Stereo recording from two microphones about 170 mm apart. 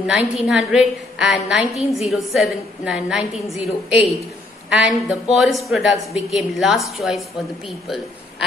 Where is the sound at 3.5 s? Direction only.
35° left (ahead or behind).